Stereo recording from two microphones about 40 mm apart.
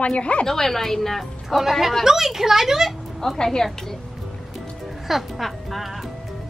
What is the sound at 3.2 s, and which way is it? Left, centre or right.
Speech, centre.